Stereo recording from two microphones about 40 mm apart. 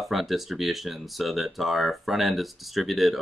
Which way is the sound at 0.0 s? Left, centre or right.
Centre.